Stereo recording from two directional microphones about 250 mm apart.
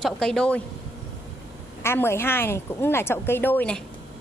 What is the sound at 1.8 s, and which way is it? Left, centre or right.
A woman's voice, centre.